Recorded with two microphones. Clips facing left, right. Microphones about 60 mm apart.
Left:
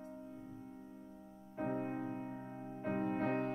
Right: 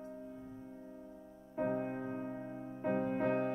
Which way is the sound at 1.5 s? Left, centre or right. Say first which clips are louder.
Right 3 dB; centre.